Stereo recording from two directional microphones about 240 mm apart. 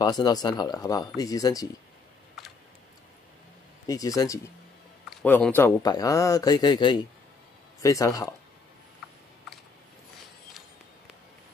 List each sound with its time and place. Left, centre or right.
0.0 s speech: centre
2.4 s typing: centre
3.8 s speech: centre